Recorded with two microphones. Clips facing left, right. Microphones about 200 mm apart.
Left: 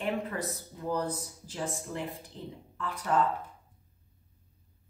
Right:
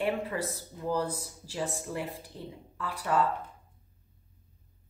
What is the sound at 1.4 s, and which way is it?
Speech, 10° right (ahead or behind).